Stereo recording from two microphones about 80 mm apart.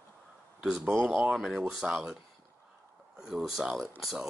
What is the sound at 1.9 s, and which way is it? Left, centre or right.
Speech, centre.